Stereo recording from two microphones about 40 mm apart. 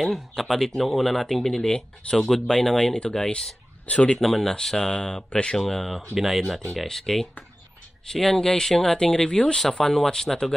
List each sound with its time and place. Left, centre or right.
0.4 s speech: centre
1.6 s speech: left
2.3 s speech: centre
3.8 s speech: left
4.2 s speech: centre
4.7 s speech: centre
5.6 s speech: centre
6.1 s speech: centre
6.9 s speech: centre